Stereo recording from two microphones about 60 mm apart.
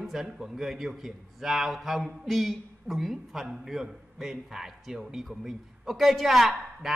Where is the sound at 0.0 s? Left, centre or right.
Centre.